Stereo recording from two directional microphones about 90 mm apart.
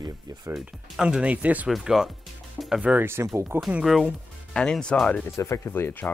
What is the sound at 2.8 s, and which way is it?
Speech, 20° right (ahead or behind).